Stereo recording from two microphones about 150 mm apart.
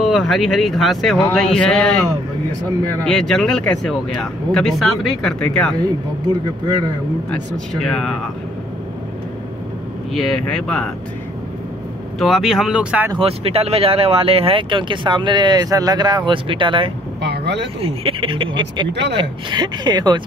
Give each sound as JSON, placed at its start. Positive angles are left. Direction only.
{"t": 0.0, "sound": "speech", "side_deg": 0}
{"t": 3.1, "sound": "speech", "side_deg": 5}
{"t": 5.8, "sound": "speech", "side_deg": -30}
{"t": 7.2, "sound": "speech", "side_deg": 0}
{"t": 10.1, "sound": "speech", "side_deg": 5}
{"t": 12.2, "sound": "speech", "side_deg": 0}
{"t": 13.2, "sound": "speech", "side_deg": -40}